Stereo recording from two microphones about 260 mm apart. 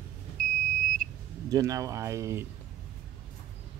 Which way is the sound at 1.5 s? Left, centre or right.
Centre.